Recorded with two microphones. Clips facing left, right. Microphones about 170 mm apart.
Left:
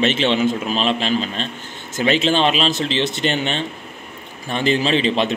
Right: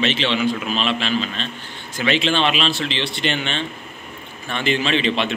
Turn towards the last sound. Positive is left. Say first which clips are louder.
# left 2 dB
turn(degrees=40)  # may be behind; listen again after turning